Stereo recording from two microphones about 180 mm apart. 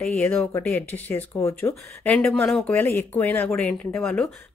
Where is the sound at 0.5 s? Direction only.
10° left (ahead or behind).